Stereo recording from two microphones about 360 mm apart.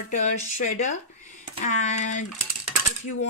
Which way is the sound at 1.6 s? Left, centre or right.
Centre.